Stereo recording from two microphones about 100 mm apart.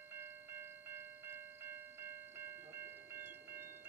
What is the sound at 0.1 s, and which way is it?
Train, 20° right (ahead or behind).